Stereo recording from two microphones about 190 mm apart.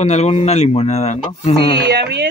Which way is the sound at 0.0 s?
35° left (ahead or behind).